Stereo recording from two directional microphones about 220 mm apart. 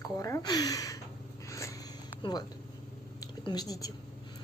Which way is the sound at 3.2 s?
15° left (ahead or behind).